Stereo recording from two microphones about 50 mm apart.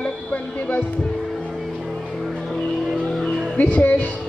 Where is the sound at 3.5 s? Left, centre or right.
Left.